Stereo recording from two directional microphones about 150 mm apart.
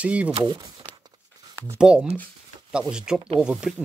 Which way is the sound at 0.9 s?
25° right (ahead or behind).